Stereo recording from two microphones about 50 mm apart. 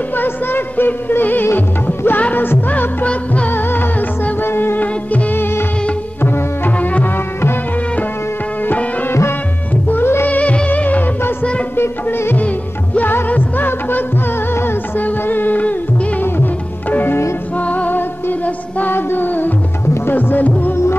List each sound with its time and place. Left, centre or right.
0.2 s music: left
2.7 s music of bollywood: left
4.5 s music: left
4.7 s music: left
10.2 s music of bollywood: left
11.7 s music: left
16.9 s music: left
17.6 s music: left
18.8 s female singing: left
20.1 s music: left